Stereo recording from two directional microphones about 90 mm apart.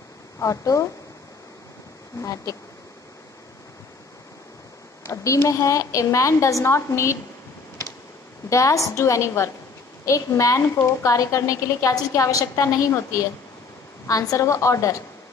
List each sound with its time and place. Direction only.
0.4 s a woman's voice: 35° left (ahead or behind)
2.1 s a woman's voice: 35° left (ahead or behind)
5.0 s a woman's voice: 35° left (ahead or behind)
8.5 s a woman's voice: 35° left (ahead or behind)